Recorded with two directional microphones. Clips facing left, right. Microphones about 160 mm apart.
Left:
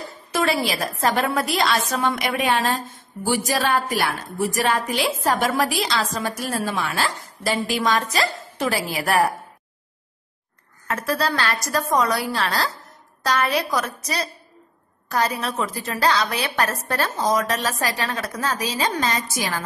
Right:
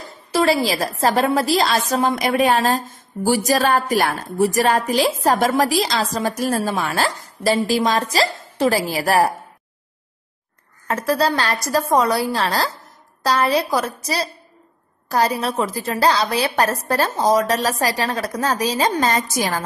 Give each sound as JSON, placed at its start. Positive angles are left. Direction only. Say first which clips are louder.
{"t": 0.3, "sound": "a woman's voice", "louder": "right 5 dB", "side_deg": -30}
{"t": 10.9, "sound": "a woman's voice", "louder": "right 4 dB", "side_deg": -35}